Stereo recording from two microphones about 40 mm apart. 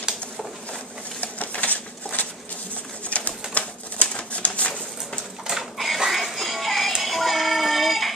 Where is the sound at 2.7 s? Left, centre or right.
Left.